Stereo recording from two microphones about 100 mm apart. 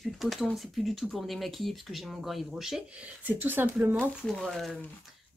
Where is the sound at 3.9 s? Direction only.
15° left (ahead or behind).